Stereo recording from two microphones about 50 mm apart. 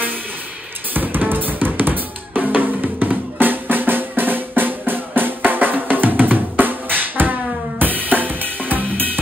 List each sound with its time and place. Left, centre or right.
0.9 s drum: right
7.8 s drum kit: right